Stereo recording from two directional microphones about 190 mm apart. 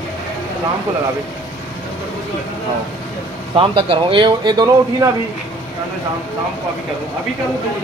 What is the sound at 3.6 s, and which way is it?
Speech, 30° right (ahead or behind).